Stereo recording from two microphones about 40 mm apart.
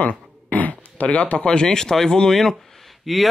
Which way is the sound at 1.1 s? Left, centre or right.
Left.